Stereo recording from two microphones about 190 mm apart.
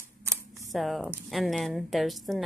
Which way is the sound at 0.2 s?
15° right (ahead or behind).